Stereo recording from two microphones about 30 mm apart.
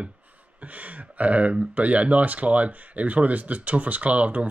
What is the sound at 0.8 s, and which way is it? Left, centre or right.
Speech, right.